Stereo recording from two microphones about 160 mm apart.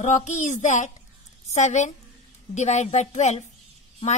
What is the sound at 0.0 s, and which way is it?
A woman's voice, 50° left (ahead or behind).